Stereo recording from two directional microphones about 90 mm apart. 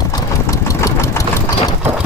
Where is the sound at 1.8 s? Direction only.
20° right (ahead or behind).